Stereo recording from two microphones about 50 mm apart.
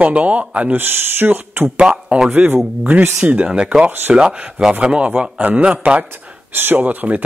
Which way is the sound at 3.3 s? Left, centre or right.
Right.